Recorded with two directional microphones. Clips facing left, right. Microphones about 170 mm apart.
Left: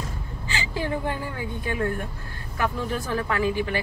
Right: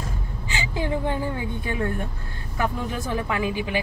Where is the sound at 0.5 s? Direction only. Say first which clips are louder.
Right 1 dB; 20° right (ahead or behind).